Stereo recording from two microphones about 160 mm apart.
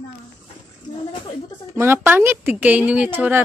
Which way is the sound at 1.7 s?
15° right (ahead or behind).